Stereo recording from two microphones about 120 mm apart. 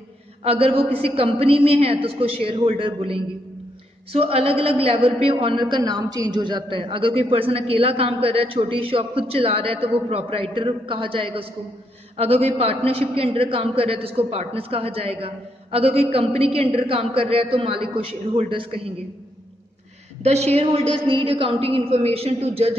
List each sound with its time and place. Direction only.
0.4 s a man's voice: 55° right (ahead or behind)
20.2 s a man's voice: 65° right (ahead or behind)